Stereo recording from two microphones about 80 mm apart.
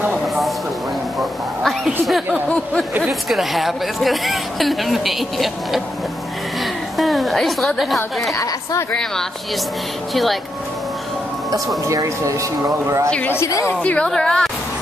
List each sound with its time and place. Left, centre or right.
1.6 s a sound: centre
3.1 s a woman's voice: centre
11.8 s speech: right
13.5 s a woman's voice: left
13.8 s speech: centre